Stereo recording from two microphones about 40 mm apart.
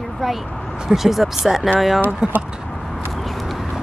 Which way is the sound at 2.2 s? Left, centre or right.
Right.